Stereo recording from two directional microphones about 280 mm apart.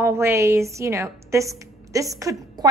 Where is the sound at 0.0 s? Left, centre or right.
Centre.